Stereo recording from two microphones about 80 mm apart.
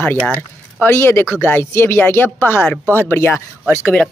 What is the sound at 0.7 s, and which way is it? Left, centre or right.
Speech, left.